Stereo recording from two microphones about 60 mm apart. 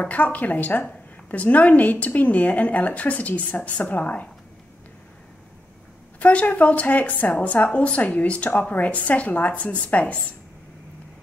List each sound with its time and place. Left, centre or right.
0.0 s a woman's voice: left
6.1 s a woman's voice: left